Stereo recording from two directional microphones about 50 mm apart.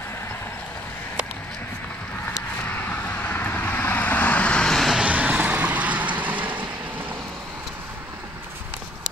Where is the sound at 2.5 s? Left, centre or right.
Left.